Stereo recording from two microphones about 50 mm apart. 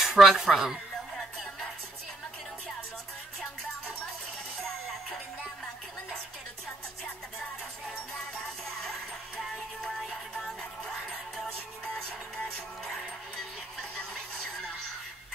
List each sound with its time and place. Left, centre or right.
0.0 s music: centre
9.4 s music: centre
10.8 s music: centre